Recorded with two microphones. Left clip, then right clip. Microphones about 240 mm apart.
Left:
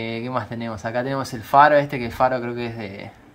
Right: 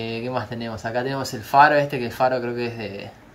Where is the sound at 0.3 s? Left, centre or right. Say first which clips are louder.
Left 1 dB; left.